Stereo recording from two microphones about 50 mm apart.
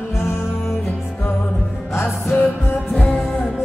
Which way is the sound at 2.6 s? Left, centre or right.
Left.